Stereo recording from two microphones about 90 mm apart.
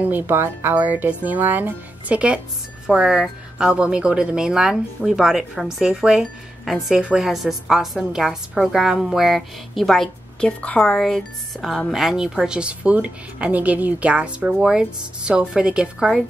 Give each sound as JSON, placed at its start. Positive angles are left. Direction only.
{"t": 0.0, "sound": "a woman's voice", "side_deg": -20}